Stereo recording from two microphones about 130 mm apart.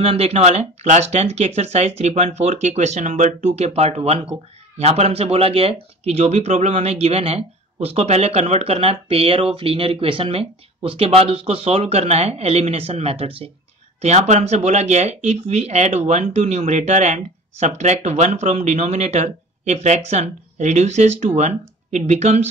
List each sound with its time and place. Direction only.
0.0 s speech: 50° right (ahead or behind)
14.0 s speech: 60° right (ahead or behind)